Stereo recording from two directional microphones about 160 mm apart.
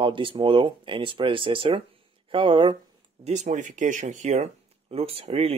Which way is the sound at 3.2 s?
45° right (ahead or behind).